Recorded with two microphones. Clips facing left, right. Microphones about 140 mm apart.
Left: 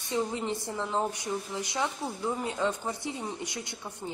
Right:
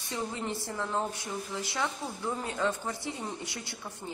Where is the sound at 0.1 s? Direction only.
20° left (ahead or behind).